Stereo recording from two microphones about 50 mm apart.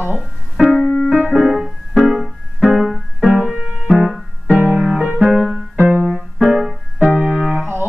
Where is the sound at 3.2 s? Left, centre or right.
Centre.